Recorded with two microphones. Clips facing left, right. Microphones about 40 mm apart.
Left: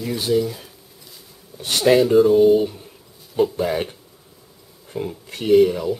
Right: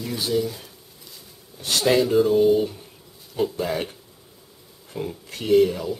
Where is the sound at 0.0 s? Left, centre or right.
Centre.